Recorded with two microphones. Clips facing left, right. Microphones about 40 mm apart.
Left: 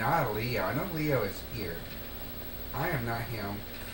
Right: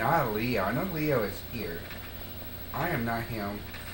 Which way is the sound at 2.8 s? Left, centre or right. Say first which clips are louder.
Right 2 dB; right.